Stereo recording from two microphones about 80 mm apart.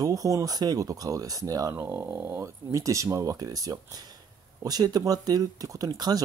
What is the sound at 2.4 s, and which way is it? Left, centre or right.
Speech, right.